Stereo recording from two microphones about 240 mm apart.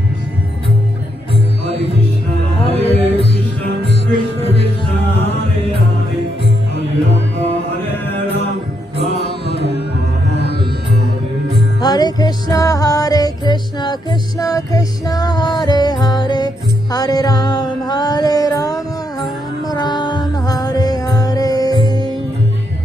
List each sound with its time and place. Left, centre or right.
2.6 s music: left
10.3 s music: right
11.8 s music: centre